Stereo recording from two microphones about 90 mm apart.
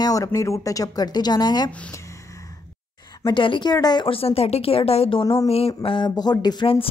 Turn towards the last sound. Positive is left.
turn(degrees=90)